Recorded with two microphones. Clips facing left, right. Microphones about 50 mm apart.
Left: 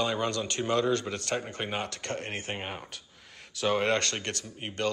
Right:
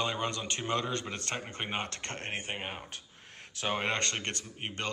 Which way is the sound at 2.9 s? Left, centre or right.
Right.